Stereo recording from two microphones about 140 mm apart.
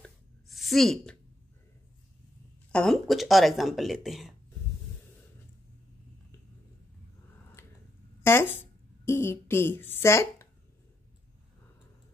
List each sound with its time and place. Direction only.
0.0 s a sound: centre (ahead or behind)
2.7 s speech: 5° left (ahead or behind)
8.2 s speech: 15° left (ahead or behind)